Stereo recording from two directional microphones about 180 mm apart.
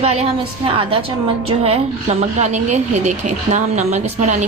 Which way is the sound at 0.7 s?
30° right (ahead or behind).